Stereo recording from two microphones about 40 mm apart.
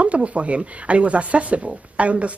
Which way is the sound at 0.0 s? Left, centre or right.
Right.